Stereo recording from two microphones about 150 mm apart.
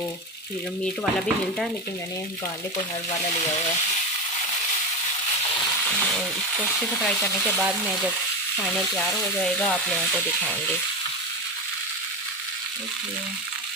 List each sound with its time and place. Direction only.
5.9 s speech: 10° left (ahead or behind)
7.5 s speech: 5° right (ahead or behind)